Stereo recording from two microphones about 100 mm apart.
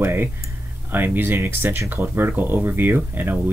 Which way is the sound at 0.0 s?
20° right (ahead or behind).